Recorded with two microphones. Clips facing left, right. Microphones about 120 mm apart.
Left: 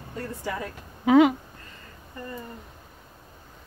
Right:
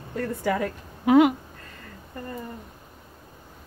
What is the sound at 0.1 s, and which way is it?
Speech, 60° right (ahead or behind).